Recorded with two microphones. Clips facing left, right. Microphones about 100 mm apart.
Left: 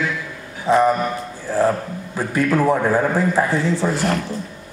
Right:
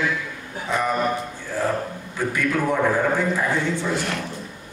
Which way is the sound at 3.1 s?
35° left (ahead or behind).